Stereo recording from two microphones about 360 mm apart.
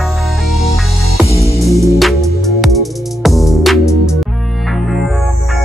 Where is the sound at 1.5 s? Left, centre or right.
Centre.